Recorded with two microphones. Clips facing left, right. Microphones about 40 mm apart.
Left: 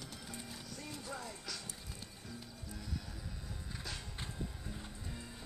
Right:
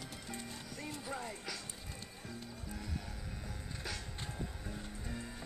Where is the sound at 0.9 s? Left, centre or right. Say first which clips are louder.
Right 3 dB; right.